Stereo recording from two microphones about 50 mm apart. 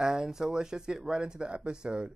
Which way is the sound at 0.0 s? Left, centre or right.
Centre.